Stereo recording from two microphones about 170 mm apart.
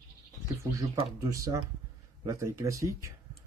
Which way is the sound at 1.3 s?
20° right (ahead or behind).